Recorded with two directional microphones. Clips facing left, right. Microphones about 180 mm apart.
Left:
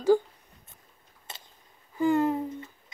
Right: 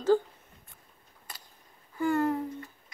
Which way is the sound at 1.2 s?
25° left (ahead or behind).